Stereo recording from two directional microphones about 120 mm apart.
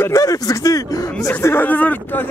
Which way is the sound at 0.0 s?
30° left (ahead or behind).